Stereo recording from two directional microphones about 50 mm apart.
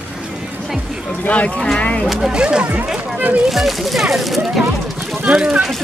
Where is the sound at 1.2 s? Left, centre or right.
Left.